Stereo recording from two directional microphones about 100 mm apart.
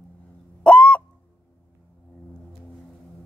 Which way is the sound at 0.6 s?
10° left (ahead or behind).